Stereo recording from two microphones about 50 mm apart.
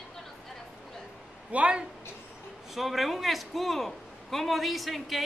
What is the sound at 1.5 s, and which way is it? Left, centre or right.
Speech, right.